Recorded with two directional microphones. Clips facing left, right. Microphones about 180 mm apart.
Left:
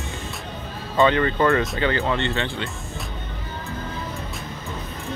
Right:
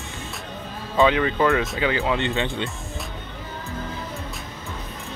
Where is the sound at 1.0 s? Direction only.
5° right (ahead or behind).